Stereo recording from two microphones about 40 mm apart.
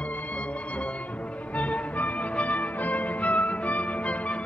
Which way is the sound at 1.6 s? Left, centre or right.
Left.